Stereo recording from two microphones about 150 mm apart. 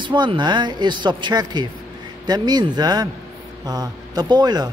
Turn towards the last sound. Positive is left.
turn(degrees=-25)  # may be behind; listen again after turning